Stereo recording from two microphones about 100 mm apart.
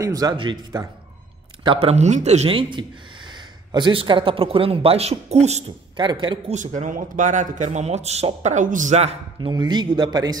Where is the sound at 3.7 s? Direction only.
55° right (ahead or behind); by 5.6 s 90° right.